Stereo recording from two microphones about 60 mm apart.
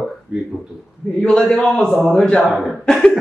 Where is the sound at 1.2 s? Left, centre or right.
Centre.